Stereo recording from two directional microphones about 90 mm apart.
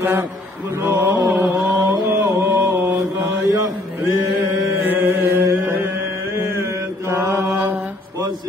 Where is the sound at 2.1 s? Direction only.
40° right (ahead or behind).